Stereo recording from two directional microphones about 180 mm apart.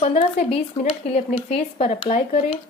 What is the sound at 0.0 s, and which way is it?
Speech, 35° left (ahead or behind).